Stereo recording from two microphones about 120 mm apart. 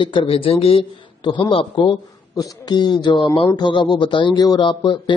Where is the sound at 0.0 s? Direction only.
45° left (ahead or behind).